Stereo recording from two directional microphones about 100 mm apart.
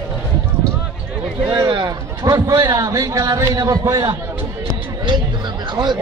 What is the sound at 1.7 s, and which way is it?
A man's voice, 45° right (ahead or behind).